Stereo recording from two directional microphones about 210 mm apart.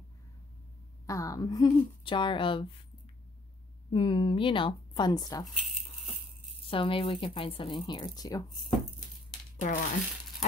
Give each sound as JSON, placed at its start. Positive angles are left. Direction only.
{"t": 1.0, "sound": "a woman's voice", "side_deg": 15}
{"t": 3.9, "sound": "speech", "side_deg": 25}
{"t": 6.7, "sound": "speech", "side_deg": 25}
{"t": 9.6, "sound": "speech", "side_deg": 35}